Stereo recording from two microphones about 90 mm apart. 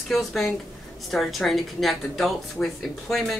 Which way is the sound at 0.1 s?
Centre (ahead or behind).